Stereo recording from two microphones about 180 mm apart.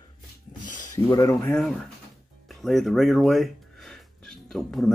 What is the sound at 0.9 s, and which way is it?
Speech, 20° left (ahead or behind).